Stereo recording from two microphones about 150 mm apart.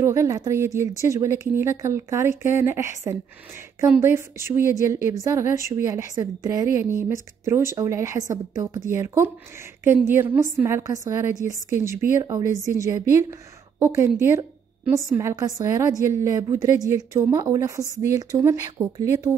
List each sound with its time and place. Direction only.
0.0 s a woman's voice: 20° right (ahead or behind)